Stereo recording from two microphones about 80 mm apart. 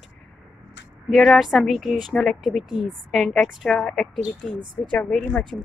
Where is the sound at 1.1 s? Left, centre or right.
Centre.